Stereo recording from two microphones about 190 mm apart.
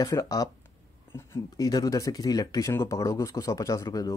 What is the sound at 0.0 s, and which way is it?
Speech, 20° left (ahead or behind).